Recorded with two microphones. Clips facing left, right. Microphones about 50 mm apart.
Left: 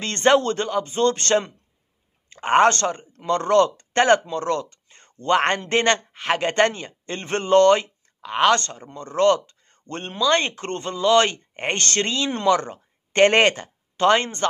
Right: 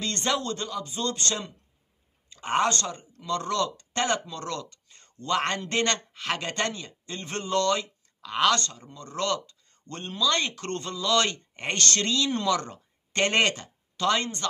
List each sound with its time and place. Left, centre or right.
0.0 s speech: left